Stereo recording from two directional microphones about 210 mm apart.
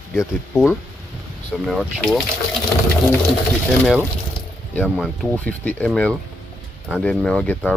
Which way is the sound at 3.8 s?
Centre (ahead or behind).